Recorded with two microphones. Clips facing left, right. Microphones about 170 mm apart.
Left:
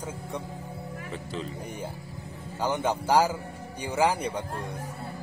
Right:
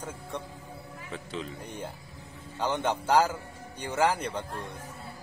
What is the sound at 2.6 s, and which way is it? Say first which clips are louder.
Speech: left 2 dB; 10° left (ahead or behind).